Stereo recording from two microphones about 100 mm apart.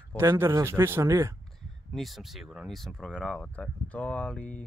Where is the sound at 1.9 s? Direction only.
Centre (ahead or behind).